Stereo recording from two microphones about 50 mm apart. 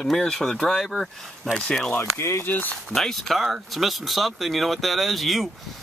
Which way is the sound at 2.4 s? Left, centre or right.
Left.